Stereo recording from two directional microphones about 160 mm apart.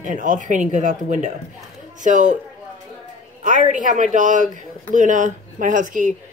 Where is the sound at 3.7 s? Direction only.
50° right (ahead or behind).